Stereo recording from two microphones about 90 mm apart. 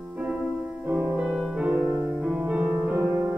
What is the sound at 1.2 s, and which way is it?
Music, 5° right (ahead or behind).